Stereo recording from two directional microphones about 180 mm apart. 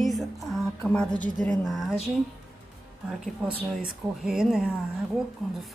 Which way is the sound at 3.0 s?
5° right (ahead or behind).